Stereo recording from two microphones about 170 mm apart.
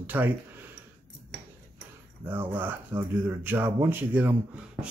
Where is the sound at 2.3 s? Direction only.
10° right (ahead or behind).